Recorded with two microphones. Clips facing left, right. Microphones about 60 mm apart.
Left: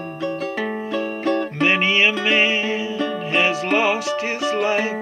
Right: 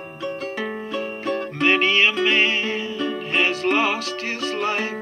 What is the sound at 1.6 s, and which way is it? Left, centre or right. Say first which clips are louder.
Music: even; centre.